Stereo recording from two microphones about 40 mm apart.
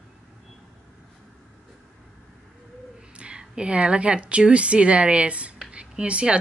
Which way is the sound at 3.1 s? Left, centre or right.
Right.